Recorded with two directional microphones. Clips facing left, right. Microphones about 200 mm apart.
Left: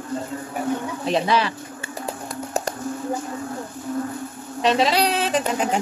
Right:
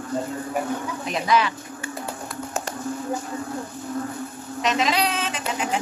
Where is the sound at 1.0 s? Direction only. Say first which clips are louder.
Left 1 dB; 30° left (ahead or behind).